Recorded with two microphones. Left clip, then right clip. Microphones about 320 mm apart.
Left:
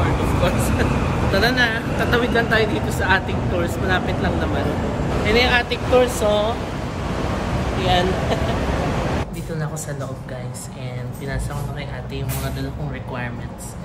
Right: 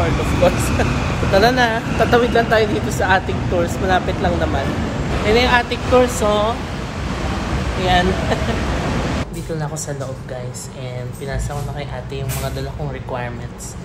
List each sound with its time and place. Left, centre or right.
0.4 s speech: centre
5.2 s speech: centre
7.8 s speech: centre